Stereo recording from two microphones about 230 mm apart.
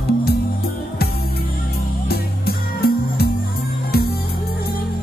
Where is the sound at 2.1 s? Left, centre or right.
Left.